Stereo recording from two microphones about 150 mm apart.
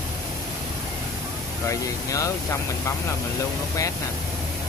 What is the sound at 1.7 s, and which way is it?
Speech, 20° left (ahead or behind).